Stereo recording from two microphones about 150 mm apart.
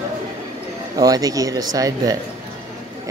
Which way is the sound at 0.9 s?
25° right (ahead or behind).